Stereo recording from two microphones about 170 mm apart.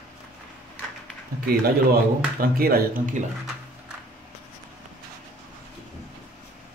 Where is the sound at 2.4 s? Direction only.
60° right (ahead or behind).